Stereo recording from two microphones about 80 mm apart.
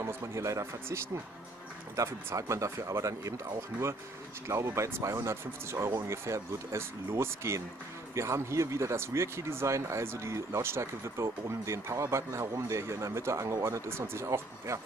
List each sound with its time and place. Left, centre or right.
0.0 s speech: right